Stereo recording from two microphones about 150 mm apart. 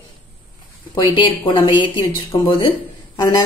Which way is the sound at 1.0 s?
30° left (ahead or behind).